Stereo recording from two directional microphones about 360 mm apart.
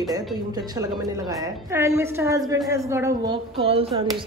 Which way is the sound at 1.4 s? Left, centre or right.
Centre.